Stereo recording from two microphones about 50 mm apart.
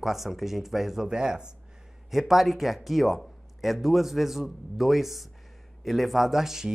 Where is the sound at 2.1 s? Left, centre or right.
Centre.